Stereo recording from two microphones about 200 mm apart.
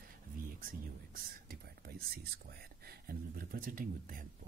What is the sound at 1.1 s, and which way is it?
Speech, 45° right (ahead or behind).